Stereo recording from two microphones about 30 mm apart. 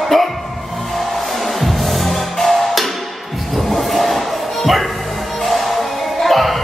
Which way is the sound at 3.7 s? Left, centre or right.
Centre.